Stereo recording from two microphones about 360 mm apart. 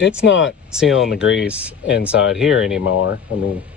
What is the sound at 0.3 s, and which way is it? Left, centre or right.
Speech, left.